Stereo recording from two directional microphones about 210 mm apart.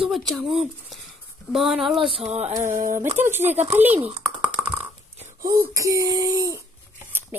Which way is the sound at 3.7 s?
10° right (ahead or behind).